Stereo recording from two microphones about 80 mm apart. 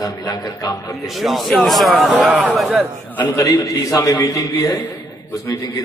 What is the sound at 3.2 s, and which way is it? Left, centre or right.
A man's voice, left.